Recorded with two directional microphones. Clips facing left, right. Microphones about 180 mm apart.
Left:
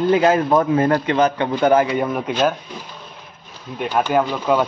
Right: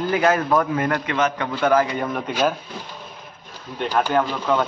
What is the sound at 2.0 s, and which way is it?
Speech, 5° left (ahead or behind).